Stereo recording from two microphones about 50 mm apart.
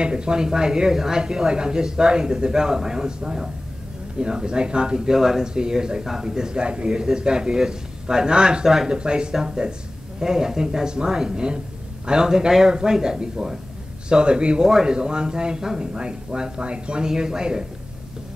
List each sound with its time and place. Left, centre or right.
0.0 s speech: centre
8.6 s speech: centre
8.9 s speech: centre